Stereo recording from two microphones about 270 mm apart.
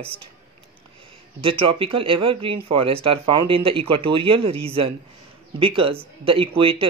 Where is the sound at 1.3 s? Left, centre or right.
Centre.